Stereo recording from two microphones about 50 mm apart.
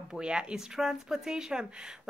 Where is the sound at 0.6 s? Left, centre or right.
Centre.